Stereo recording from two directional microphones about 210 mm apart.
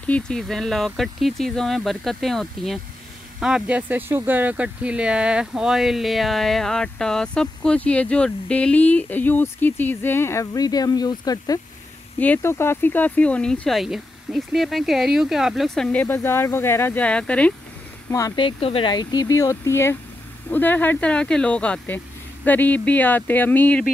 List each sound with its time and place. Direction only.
0.0 s speech: 5° left (ahead or behind)
18.1 s speech: 20° left (ahead or behind)